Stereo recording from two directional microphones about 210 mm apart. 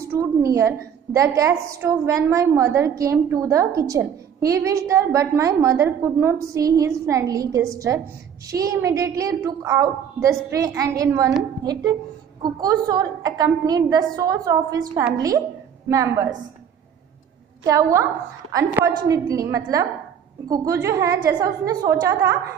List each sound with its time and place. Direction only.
0.1 s a woman's voice: 15° right (ahead or behind)
17.6 s a woman's voice: 15° right (ahead or behind)